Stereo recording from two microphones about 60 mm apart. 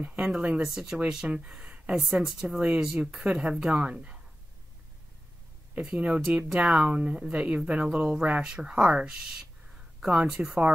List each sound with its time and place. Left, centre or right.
0.6 s speech: centre
5.8 s speech: centre